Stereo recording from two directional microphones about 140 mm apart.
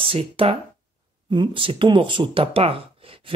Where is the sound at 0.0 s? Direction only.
40° right (ahead or behind).